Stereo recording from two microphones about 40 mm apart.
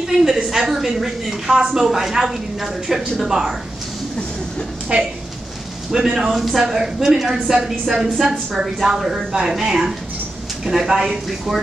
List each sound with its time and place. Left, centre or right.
0.0 s a woman's voice: centre
4.9 s speech: right
5.9 s a woman's voice: centre